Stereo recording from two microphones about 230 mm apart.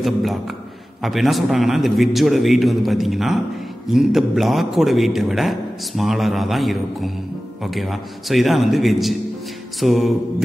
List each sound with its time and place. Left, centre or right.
0.0 s a man's voice: centre